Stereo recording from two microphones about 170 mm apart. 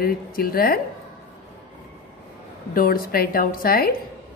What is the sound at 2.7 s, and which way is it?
A woman's voice, 60° left (ahead or behind).